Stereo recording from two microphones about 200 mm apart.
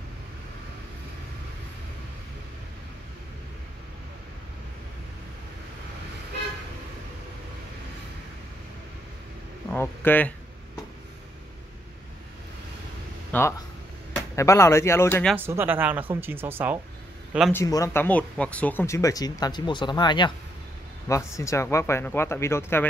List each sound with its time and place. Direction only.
9.7 s a sound: 10° left (ahead or behind)
13.3 s speech: 10° left (ahead or behind)
15.3 s speech: 10° right (ahead or behind)
17.5 s speech: 15° left (ahead or behind)